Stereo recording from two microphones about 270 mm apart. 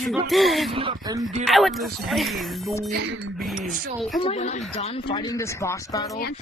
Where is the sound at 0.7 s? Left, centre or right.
Centre.